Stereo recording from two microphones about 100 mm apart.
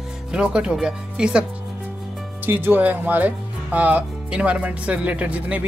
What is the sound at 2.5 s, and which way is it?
Speech, 20° right (ahead or behind).